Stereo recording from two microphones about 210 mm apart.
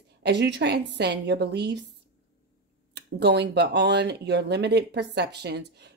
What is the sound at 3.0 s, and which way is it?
Speech, 55° right (ahead or behind).